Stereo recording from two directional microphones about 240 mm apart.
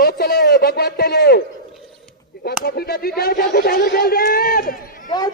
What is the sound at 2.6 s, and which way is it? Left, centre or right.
Speech, left.